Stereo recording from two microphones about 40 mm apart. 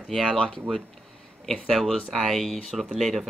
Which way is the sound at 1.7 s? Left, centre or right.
Centre.